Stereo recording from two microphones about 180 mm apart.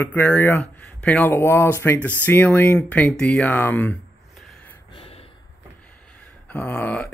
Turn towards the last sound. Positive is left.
turn(degrees=5)  # may be behind; listen again after turning